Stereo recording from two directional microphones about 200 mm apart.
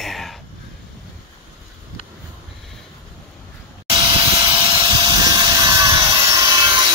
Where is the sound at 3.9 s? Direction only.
25° right (ahead or behind).